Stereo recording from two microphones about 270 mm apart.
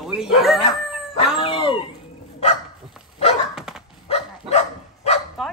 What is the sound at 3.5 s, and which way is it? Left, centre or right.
Dog, centre.